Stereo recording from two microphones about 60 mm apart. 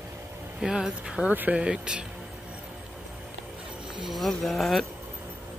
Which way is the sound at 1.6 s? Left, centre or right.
Centre.